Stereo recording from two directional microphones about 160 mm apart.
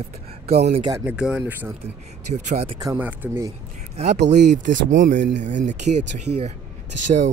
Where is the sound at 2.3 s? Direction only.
40° right (ahead or behind).